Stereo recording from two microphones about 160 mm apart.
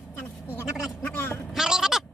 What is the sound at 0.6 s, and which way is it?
Vehicle, 15° left (ahead or behind).